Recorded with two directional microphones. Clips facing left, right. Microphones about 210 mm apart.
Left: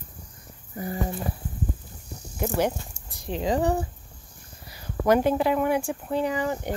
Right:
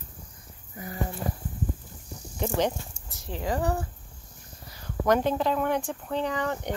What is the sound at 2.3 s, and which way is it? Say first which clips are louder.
Speech: left 2 dB; 10° left (ahead or behind).